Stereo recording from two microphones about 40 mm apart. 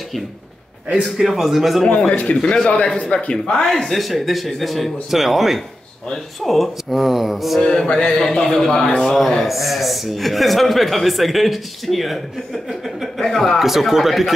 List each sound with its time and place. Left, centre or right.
1.0 s a man's voice: centre
2.0 s speech: left
2.5 s speech: left
3.6 s a man's voice: centre
7.6 s a man's voice: left
9.4 s a man's voice: centre
13.3 s a man's voice: centre
13.6 s a man's voice: centre